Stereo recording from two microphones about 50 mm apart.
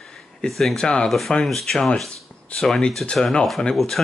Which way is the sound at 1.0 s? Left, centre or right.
Centre.